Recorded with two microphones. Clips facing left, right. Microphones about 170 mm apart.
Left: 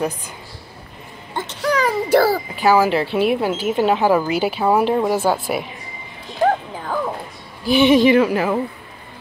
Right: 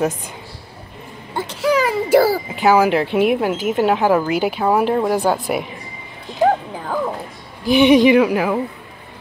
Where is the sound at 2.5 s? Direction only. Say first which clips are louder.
Right 1 dB; 20° right (ahead or behind).